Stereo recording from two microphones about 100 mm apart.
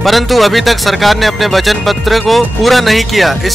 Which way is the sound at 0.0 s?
Centre (ahead or behind).